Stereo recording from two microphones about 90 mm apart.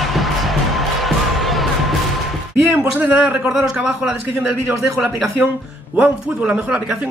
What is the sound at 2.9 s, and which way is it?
Speech, 15° right (ahead or behind).